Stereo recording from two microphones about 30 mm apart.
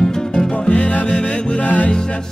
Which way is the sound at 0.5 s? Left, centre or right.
Left.